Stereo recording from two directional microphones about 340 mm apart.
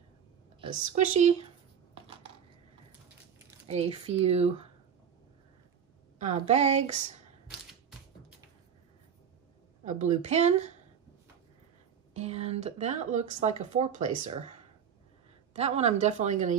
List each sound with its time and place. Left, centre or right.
0.6 s speech: centre
3.6 s speech: centre
6.1 s speech: centre
9.8 s speech: right
12.1 s speech: centre
15.5 s speech: centre